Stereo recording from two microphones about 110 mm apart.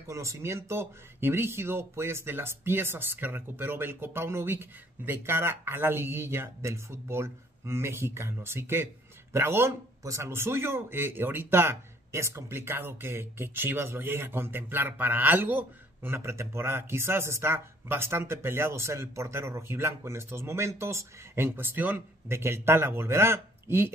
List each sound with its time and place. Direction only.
0.0 s a man's voice: 30° right (ahead or behind)